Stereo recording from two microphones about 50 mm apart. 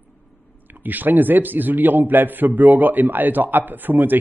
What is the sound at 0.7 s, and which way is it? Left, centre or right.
A man's voice, right.